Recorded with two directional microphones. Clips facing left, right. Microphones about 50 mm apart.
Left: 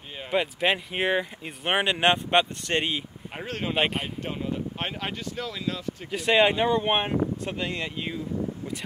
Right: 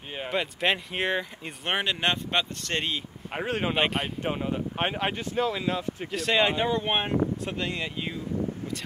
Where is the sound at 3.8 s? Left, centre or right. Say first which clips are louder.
Left 2 dB; centre.